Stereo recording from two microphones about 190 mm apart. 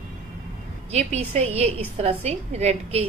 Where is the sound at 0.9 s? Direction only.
35° right (ahead or behind).